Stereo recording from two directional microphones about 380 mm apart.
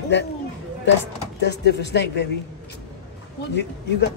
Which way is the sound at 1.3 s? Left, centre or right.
Left.